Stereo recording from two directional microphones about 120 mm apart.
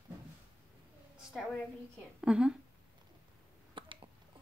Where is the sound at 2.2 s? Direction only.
5° right (ahead or behind).